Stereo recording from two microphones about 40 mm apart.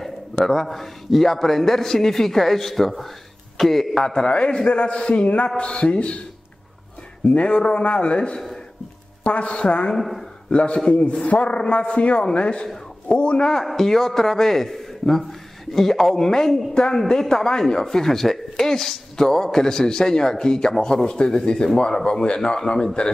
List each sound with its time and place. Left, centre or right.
0.5 s a man's voice: centre
3.9 s a man's voice: centre
7.2 s a man's voice: left
9.9 s speech: centre
10.5 s a man's voice: left
13.5 s a man's voice: centre